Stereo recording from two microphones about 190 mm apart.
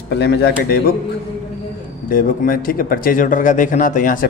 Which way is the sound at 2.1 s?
50° left (ahead or behind).